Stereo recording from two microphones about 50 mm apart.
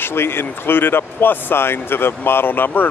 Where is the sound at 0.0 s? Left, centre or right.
Left.